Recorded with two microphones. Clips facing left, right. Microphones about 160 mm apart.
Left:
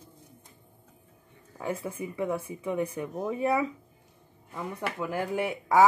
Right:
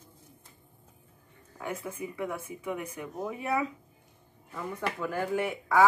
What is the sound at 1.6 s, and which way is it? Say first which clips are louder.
Speech: left 3 dB; 30° left (ahead or behind).